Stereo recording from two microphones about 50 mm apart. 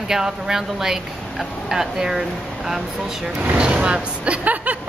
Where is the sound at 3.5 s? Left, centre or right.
Right.